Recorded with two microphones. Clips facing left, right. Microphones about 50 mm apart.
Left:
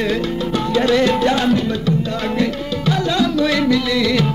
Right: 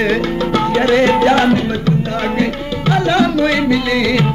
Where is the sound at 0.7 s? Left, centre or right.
Right.